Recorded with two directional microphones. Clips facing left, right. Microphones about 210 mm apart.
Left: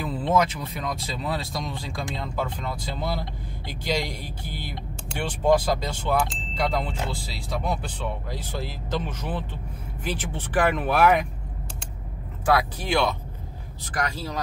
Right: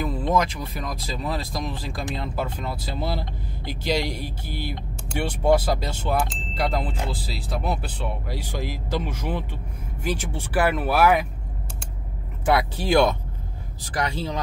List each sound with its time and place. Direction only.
0.0 s speech: 5° left (ahead or behind)
12.4 s speech: 20° right (ahead or behind)
12.8 s speech: 45° right (ahead or behind)